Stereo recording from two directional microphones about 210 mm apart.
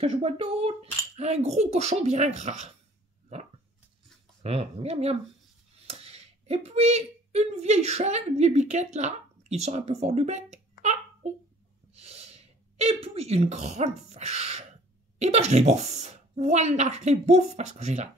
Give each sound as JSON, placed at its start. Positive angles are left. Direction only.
{"t": 0.0, "sound": "a woman's voice", "side_deg": -30}
{"t": 4.4, "sound": "a woman's voice", "side_deg": -30}